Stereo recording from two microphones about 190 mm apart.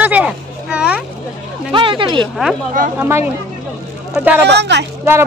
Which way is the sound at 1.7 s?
25° right (ahead or behind).